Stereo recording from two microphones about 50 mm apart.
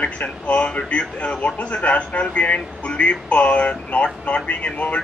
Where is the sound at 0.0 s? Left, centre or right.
Left.